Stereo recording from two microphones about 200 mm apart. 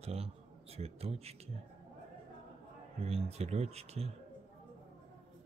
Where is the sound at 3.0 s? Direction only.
30° right (ahead or behind).